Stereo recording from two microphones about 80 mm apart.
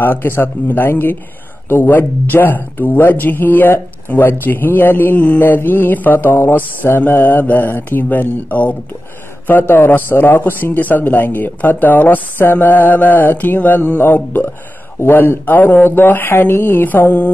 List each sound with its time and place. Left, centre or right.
0.0 s speech: left